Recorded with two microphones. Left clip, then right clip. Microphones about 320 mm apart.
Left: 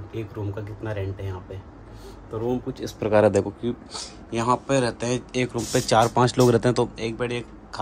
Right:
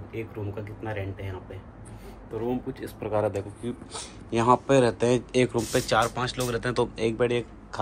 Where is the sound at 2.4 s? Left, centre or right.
Centre; by 3.3 s left.